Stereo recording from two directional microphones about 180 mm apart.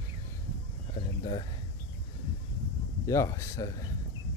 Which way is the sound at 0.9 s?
30° left (ahead or behind).